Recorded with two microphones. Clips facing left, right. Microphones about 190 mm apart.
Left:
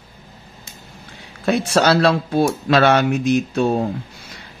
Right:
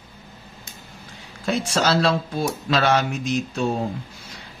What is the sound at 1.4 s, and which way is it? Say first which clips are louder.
Speech: left 5 dB; 60° left (ahead or behind).